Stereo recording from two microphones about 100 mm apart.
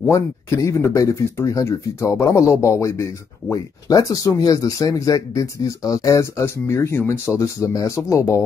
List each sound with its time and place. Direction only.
0.1 s speech: 30° left (ahead or behind)